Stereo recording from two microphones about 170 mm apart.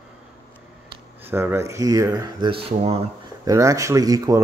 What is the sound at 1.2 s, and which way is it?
Speech, 15° right (ahead or behind).